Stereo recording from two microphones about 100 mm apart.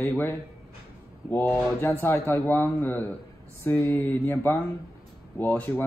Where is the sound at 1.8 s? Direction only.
25° left (ahead or behind).